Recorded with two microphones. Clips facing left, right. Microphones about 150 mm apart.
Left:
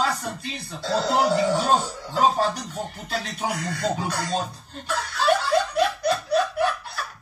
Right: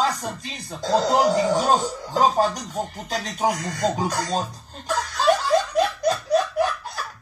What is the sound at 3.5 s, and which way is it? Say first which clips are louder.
Speech: right 2 dB; 40° right (ahead or behind).